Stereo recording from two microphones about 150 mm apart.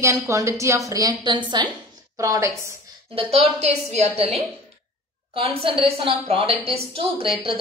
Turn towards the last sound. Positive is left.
turn(degrees=-35)  # may be behind; listen again after turning